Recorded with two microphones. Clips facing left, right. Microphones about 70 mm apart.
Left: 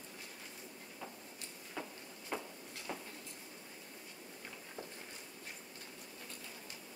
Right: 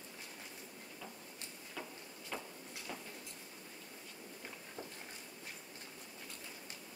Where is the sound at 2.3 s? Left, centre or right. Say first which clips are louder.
Left 3 dB; left.